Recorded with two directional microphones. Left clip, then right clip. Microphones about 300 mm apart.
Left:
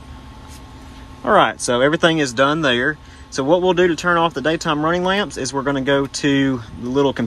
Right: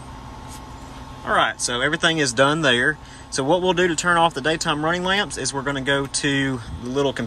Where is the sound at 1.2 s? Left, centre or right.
Centre.